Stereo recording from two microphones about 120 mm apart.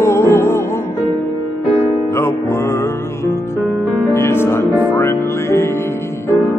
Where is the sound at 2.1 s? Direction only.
20° left (ahead or behind).